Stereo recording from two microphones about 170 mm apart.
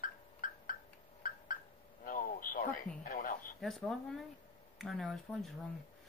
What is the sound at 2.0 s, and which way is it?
Radio, 55° left (ahead or behind).